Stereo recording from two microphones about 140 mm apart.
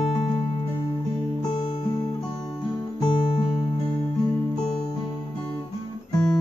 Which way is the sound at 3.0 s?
40° left (ahead or behind).